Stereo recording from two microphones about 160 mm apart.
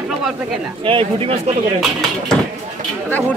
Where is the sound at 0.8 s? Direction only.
35° right (ahead or behind).